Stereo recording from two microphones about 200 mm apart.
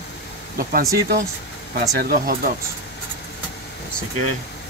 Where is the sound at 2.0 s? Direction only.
50° right (ahead or behind).